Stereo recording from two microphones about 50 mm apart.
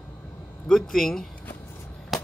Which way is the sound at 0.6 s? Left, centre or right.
Centre.